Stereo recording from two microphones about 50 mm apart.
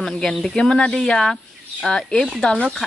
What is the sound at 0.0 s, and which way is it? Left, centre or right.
Speech, centre.